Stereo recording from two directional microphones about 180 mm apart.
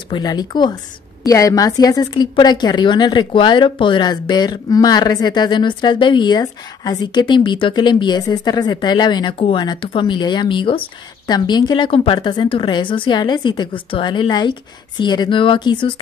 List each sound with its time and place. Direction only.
0.1 s a woman's voice: 20° left (ahead or behind)